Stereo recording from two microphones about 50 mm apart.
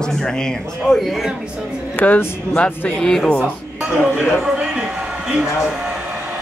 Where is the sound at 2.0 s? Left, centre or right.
Left.